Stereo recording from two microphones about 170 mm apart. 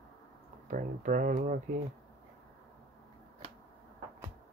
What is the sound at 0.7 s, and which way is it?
Speech, 50° right (ahead or behind).